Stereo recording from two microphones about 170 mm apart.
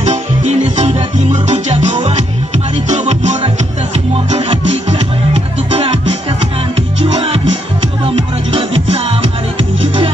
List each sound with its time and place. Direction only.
0.0 s music: 45° right (ahead or behind)
7.1 s music: 35° right (ahead or behind)
8.5 s music: 35° right (ahead or behind)